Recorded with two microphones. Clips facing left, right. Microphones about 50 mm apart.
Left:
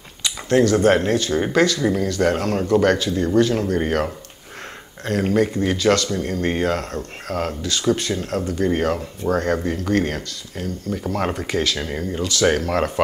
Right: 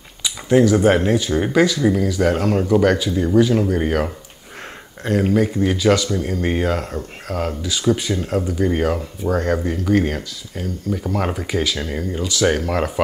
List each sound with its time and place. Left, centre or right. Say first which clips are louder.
0.2 s speech: right 2 dB; centre